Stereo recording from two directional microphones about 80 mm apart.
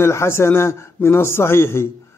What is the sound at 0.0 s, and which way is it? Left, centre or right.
A man's voice, left.